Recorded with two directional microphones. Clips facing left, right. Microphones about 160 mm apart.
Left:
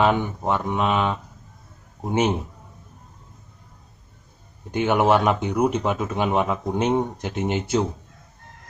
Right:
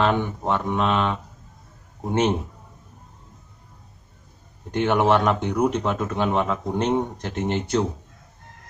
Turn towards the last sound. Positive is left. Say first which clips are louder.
# even
turn(degrees=10)  # may be behind; listen again after turning